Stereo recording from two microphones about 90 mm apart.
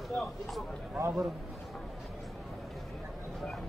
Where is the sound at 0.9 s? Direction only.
30° right (ahead or behind).